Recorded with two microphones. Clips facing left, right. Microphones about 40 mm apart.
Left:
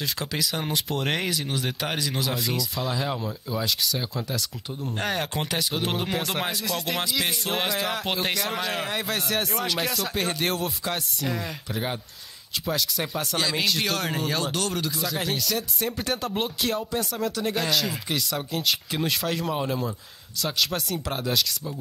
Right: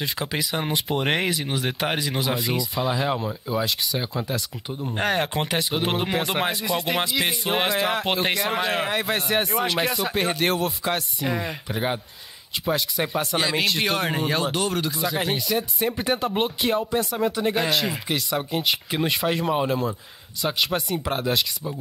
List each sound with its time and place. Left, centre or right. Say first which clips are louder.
0.0 s speech: right 2 dB; centre
4.8 s speech: right 4 dB; centre